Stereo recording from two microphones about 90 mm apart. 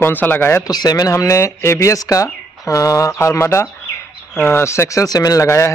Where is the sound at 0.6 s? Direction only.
50° left (ahead or behind).